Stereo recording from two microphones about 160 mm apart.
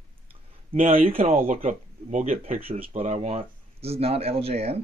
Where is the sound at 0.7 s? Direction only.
40° right (ahead or behind).